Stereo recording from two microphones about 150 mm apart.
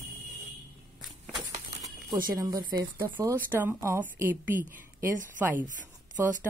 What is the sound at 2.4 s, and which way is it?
Speech, 25° right (ahead or behind).